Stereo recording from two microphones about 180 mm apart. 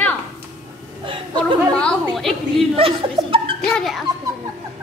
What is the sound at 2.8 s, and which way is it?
Speech, 30° right (ahead or behind).